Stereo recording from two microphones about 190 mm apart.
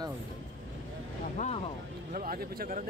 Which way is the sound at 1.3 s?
35° left (ahead or behind).